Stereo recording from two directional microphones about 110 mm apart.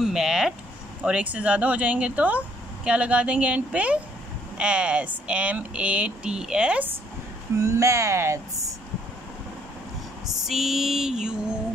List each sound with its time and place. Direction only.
0.0 s speech: 5° right (ahead or behind)
7.5 s speech: 30° right (ahead or behind)
10.2 s a sound: 5° right (ahead or behind)